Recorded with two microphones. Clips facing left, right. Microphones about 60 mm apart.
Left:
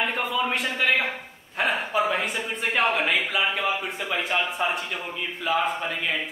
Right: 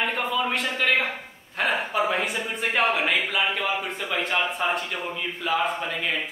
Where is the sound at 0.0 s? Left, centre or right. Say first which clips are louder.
Even; centre.